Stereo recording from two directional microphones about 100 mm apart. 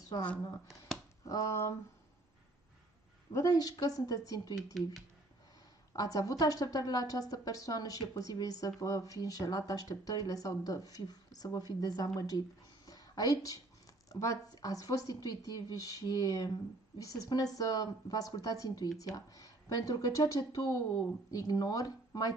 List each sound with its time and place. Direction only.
0.1 s speech: 45° left (ahead or behind)
0.7 s a sound: centre (ahead or behind)
1.2 s a woman's voice: 30° left (ahead or behind)
3.3 s a woman's voice: 35° left (ahead or behind)
5.9 s a woman's voice: 35° left (ahead or behind)
12.2 s a sound: 40° left (ahead or behind)
14.2 s a woman's voice: 35° left (ahead or behind)